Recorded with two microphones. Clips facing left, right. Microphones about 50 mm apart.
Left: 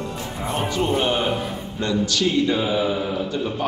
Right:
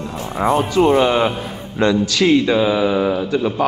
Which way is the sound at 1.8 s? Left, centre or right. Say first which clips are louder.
Right 6 dB; right.